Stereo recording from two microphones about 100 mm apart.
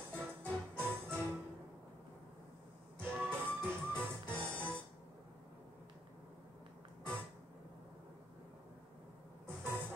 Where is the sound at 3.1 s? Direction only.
20° right (ahead or behind).